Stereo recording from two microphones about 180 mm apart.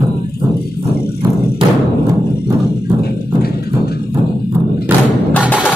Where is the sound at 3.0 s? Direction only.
60° left (ahead or behind).